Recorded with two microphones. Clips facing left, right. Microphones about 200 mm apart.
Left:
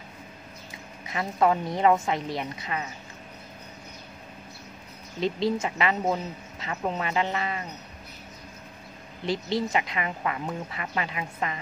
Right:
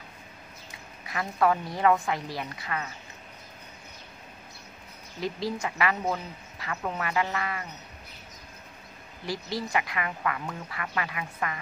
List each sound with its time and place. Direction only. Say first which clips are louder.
1.0 s a woman's voice: left 2 dB; 20° left (ahead or behind)
5.2 s a woman's voice: left 5 dB; 25° left (ahead or behind)
9.2 s a woman's voice: left 5 dB; 25° left (ahead or behind)